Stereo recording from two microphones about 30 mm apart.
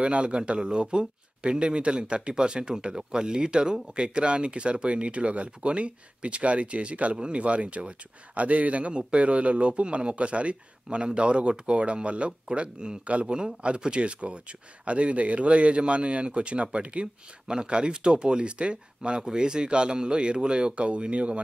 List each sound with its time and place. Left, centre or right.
0.0 s a man's voice: right
13.0 s speech: right
13.3 s a man's voice: right
17.5 s a man's voice: right